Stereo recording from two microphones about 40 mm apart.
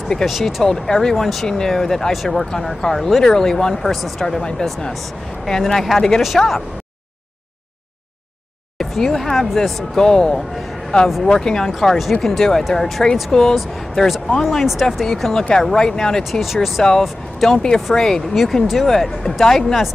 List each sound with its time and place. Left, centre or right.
0.2 s speech: centre
0.7 s speech: centre
5.5 s speech: centre
6.2 s speech: centre
8.7 s speech: centre
9.9 s speech: centre
12.0 s speech: centre
13.6 s speech: centre
15.3 s speech: centre
16.3 s speech: centre
17.5 s speech: centre
17.7 s speech: centre